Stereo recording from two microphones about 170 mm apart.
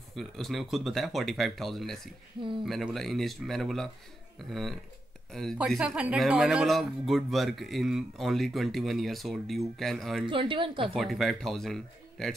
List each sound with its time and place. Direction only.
0.1 s speech: centre (ahead or behind)
10.2 s speech: 30° right (ahead or behind)
10.9 s speech: centre (ahead or behind)